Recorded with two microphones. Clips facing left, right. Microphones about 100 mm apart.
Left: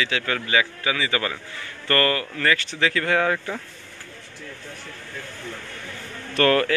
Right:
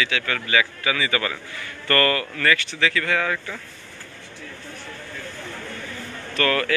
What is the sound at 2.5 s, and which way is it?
Speech, 40° left (ahead or behind).